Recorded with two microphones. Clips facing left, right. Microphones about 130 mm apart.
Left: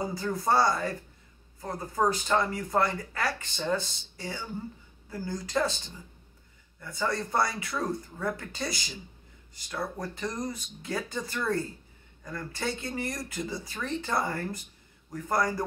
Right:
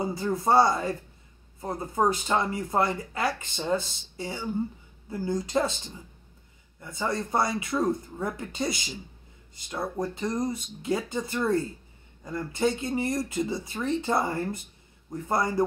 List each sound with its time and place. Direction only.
0.0 s speech: 25° right (ahead or behind)
6.8 s speech: 25° right (ahead or behind)